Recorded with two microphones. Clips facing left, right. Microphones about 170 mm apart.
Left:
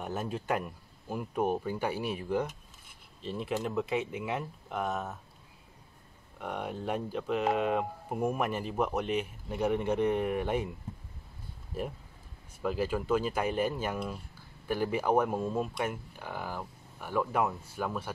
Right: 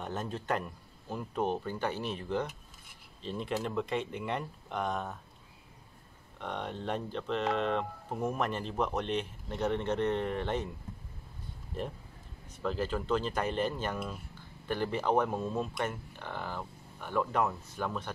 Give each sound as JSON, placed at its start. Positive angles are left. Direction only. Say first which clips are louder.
{"t": 0.0, "sound": "speech", "louder": "left 2 dB", "side_deg": 10}
{"t": 6.4, "sound": "speech", "louder": "left 2 dB", "side_deg": 10}
{"t": 11.7, "sound": "speech", "louder": "left 2 dB", "side_deg": 10}